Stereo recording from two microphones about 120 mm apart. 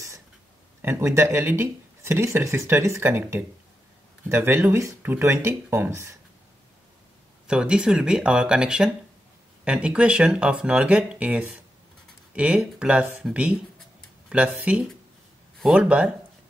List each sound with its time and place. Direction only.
0.8 s speech: 25° right (ahead or behind)
7.4 s speech: 5° right (ahead or behind)